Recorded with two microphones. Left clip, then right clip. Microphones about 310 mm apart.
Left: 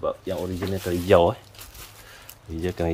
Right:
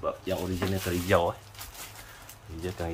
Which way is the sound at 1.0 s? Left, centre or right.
Left.